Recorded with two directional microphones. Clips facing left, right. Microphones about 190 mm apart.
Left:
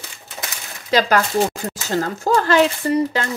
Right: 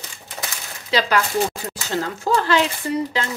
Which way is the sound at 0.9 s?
45° left (ahead or behind).